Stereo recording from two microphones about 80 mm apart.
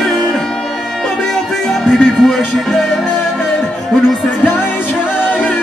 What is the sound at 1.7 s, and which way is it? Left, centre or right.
Music, centre.